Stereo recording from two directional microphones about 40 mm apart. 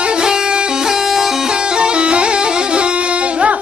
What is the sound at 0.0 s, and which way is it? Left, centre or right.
Music, right.